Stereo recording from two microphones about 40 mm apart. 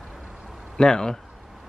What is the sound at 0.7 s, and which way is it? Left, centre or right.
Speech, centre.